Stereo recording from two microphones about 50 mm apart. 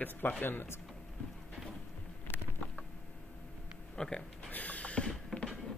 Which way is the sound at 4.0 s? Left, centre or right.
Centre.